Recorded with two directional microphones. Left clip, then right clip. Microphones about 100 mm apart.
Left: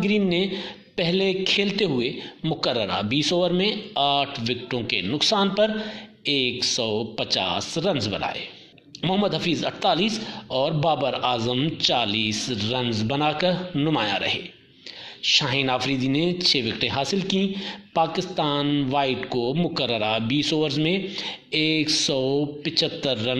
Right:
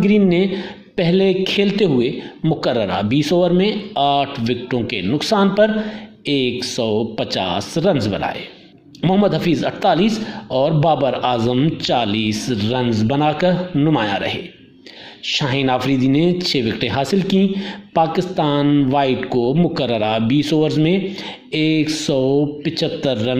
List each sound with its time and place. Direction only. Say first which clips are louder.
0.6 s a man's voice: right 5 dB; 40° right (ahead or behind)
5.2 s a man's voice: right 6 dB; 50° right (ahead or behind); by 23.3 s 35° right (ahead or behind)